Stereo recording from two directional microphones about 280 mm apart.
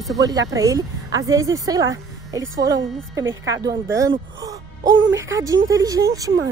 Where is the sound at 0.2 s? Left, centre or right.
Centre.